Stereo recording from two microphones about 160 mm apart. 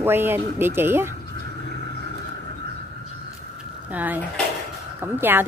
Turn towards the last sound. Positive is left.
turn(degrees=-15)  # may be behind; listen again after turning